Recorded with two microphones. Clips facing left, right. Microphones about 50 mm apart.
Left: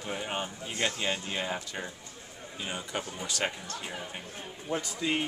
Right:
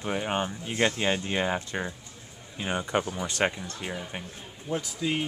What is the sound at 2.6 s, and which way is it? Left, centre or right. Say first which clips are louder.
Speech: right 8 dB; right.